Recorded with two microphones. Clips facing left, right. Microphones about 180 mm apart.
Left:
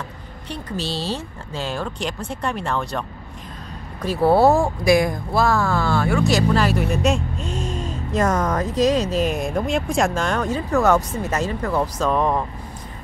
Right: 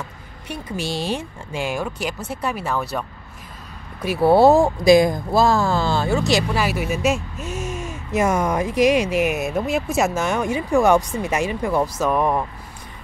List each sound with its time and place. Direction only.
0.5 s speech: 10° right (ahead or behind)
6.3 s speech: 10° right (ahead or behind)